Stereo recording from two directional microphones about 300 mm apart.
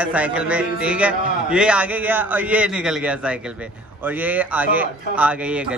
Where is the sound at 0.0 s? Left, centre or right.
Centre.